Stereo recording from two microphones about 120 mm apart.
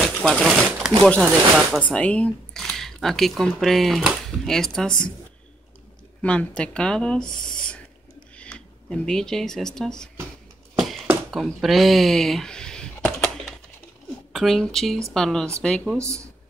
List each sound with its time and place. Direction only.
0.0 s speech: 5° left (ahead or behind)
6.2 s speech: 10° left (ahead or behind)
7.4 s owl: 5° left (ahead or behind)
8.4 s speech: 10° left (ahead or behind)
10.8 s a sound: centre (ahead or behind)
14.3 s speech: centre (ahead or behind)
16.0 s speech: 25° right (ahead or behind)